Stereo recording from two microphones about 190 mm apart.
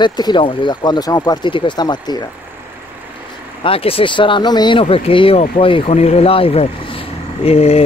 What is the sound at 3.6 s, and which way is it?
Speech, 30° left (ahead or behind).